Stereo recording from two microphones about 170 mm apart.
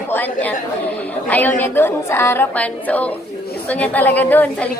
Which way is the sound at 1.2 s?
10° left (ahead or behind).